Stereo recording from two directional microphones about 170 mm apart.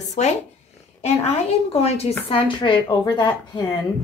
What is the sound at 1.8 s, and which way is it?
A woman's voice, 35° left (ahead or behind).